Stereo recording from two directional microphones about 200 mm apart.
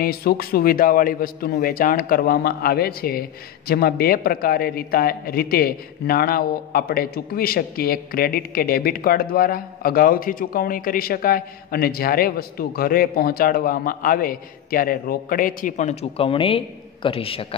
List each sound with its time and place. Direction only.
0.0 s a man's voice: 50° left (ahead or behind); by 17.6 s 30° left (ahead or behind)